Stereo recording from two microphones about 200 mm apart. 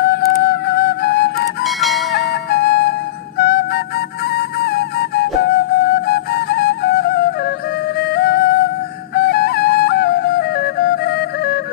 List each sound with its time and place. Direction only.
0.1 s flute: 55° left (ahead or behind)
1.6 s music: centre (ahead or behind)
2.5 s flute: 55° left (ahead or behind)
5.8 s music: 50° left (ahead or behind)